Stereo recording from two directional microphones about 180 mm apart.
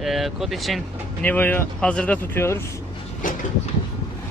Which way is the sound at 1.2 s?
10° left (ahead or behind).